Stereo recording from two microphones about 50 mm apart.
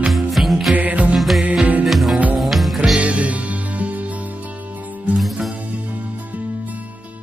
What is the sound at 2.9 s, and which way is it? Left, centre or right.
Music, right.